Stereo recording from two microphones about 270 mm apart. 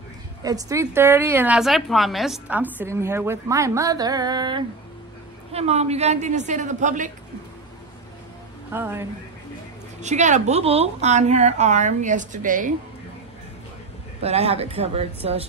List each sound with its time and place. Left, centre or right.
0.4 s a woman's voice: centre
8.7 s a woman's voice: centre
9.9 s a woman's voice: right
14.2 s a woman's voice: right